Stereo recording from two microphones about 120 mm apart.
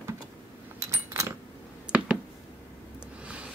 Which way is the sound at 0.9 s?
25° right (ahead or behind).